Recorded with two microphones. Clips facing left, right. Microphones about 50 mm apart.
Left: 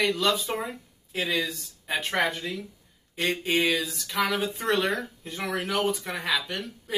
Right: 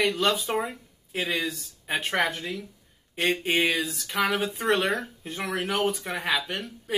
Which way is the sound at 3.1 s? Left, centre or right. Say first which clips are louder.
Right 1 dB; centre.